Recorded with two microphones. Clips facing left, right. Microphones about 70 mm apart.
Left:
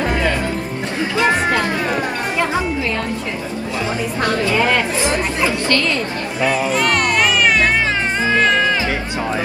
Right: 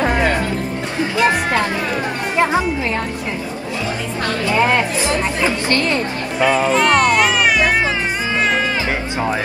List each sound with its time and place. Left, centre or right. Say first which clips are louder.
1.1 s music: even; right
4.5 s speech: right 1 dB; right